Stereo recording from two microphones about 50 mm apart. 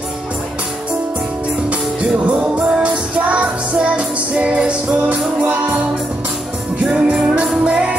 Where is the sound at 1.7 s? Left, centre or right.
Right.